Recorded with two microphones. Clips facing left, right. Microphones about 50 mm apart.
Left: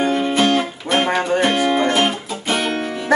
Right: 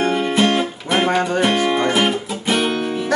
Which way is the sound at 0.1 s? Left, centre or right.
Centre.